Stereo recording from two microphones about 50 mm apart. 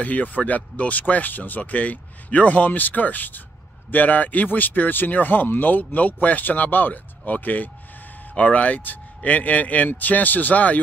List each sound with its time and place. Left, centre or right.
0.0 s a man's voice: left